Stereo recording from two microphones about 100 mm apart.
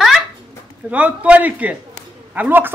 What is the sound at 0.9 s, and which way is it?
A woman's voice, 15° right (ahead or behind).